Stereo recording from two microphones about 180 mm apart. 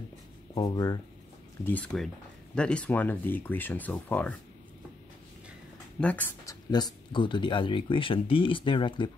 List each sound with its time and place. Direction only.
0.6 s speech: 20° left (ahead or behind)
1.6 s speech: 10° left (ahead or behind)
5.9 s speech: 10° left (ahead or behind)
6.7 s speech: 25° left (ahead or behind)